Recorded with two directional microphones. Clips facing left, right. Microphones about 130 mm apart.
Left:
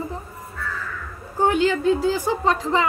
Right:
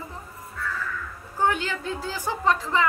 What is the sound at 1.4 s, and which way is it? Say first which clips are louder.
A woman's voice: left 6 dB; 20° left (ahead or behind).